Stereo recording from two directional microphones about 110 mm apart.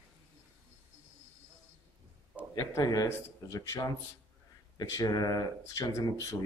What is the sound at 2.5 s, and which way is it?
Speech, 25° left (ahead or behind).